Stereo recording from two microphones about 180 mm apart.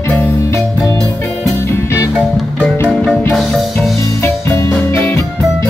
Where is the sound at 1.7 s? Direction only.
15° left (ahead or behind).